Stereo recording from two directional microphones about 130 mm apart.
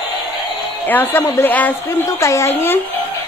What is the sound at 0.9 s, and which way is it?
A woman's voice, 15° left (ahead or behind).